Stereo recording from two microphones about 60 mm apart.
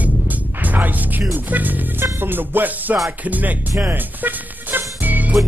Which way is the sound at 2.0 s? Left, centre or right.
Right.